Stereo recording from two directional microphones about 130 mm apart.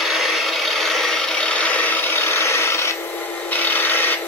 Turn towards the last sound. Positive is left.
turn(degrees=15)  # may be behind; listen again after turning